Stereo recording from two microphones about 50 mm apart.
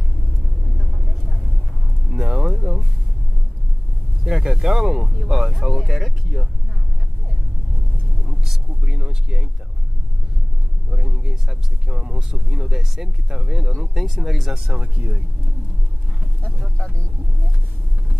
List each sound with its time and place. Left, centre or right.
2.0 s music: centre
4.2 s speech: centre
8.2 s a sound: centre
10.9 s speech: centre
14.5 s speech: right
16.7 s speech: left